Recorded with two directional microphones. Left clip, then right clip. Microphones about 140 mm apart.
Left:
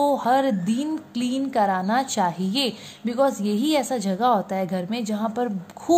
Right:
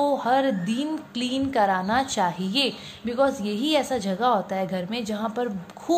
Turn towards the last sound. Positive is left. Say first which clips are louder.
# left 3 dB
turn(degrees=30)  # may be behind; listen again after turning